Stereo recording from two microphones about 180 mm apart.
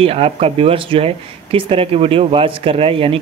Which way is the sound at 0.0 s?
30° right (ahead or behind).